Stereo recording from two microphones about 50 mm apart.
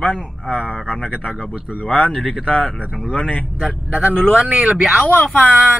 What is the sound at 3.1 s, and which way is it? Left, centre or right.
Speech, left.